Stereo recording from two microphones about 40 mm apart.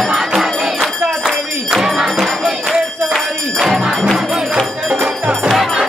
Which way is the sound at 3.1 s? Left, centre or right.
Centre.